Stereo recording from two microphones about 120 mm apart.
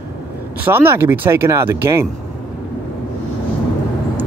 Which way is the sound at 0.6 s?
20° right (ahead or behind).